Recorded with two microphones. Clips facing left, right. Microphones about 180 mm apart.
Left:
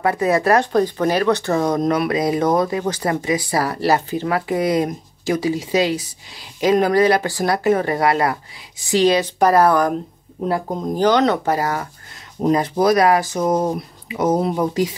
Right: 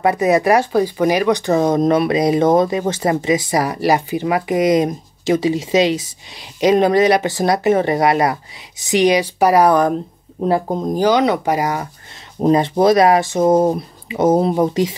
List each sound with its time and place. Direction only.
0.0 s speech: 20° right (ahead or behind)
11.0 s speech: 10° right (ahead or behind)